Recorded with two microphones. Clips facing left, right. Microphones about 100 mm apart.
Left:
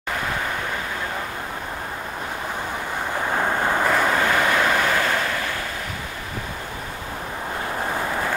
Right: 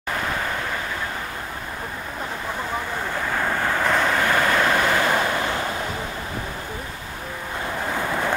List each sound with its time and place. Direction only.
3.3 s vehicle: 20° left (ahead or behind)
3.8 s vehicle: 10° left (ahead or behind)
4.6 s vehicle: 10° right (ahead or behind)